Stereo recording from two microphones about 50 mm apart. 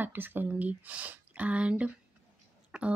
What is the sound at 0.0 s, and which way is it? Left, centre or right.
Speech, right.